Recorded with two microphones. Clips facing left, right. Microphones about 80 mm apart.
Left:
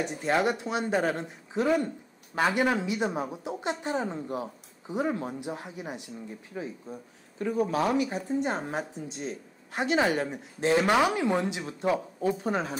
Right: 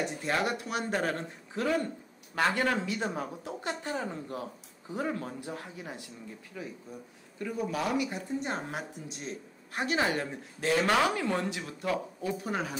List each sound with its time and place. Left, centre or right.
0.0 s speech: left